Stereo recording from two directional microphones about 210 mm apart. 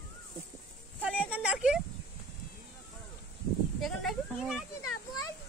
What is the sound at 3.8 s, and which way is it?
Speech, centre (ahead or behind).